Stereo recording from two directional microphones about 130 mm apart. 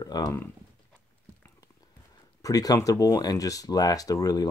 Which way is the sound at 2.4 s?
30° left (ahead or behind).